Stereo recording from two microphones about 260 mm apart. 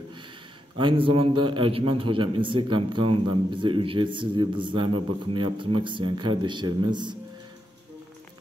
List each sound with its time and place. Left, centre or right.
0.7 s a man's voice: centre